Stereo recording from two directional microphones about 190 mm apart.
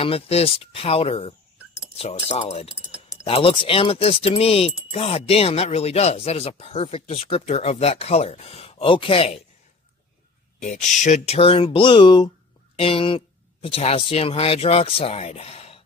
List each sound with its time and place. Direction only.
0.0 s speech: 30° left (ahead or behind)
10.6 s speech: 40° left (ahead or behind)